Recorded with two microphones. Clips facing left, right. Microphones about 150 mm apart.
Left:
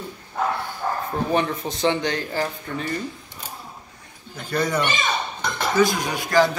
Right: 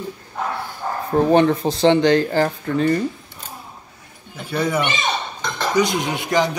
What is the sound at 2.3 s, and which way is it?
Speech, 50° right (ahead or behind).